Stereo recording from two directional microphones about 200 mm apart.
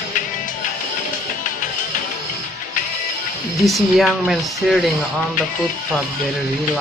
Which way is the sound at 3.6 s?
Centre (ahead or behind).